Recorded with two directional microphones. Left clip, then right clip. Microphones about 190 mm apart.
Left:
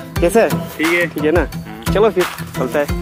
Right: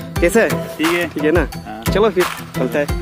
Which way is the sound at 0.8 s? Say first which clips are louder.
Left 1 dB; 25° right (ahead or behind).